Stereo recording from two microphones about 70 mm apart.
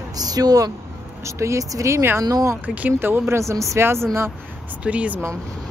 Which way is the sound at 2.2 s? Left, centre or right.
Right.